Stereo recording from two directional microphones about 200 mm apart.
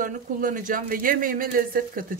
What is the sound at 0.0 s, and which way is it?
Speech, 40° right (ahead or behind).